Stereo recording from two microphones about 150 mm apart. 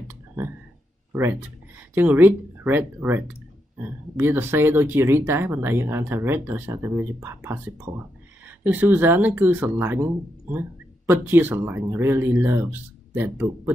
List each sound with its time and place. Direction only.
1.8 s speech: 10° right (ahead or behind)